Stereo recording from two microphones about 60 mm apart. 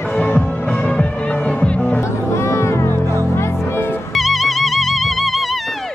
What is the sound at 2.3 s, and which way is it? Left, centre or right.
Music, left.